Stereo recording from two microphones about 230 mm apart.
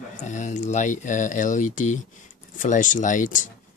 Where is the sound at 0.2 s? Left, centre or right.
Left.